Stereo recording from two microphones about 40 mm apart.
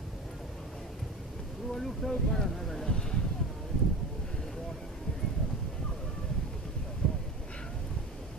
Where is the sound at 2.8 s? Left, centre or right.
Centre.